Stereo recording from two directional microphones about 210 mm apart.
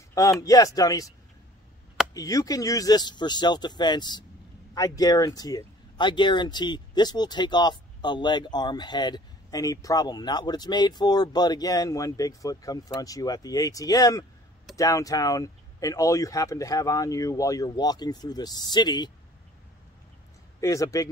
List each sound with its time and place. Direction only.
0.1 s speech: 15° left (ahead or behind)
2.1 s speech: 15° left (ahead or behind)
20.6 s speech: 15° left (ahead or behind)